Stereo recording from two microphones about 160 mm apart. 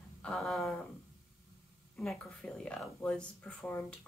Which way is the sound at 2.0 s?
5° left (ahead or behind).